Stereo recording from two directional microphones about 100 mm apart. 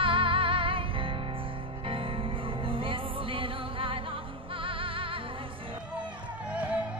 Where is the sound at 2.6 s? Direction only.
60° right (ahead or behind).